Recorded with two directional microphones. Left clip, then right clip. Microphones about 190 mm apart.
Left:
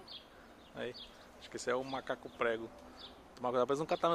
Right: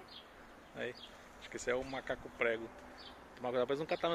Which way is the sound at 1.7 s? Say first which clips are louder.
Left 1 dB; 15° left (ahead or behind).